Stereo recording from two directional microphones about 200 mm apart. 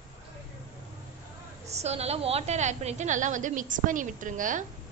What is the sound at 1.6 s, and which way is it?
A woman's voice, 35° right (ahead or behind).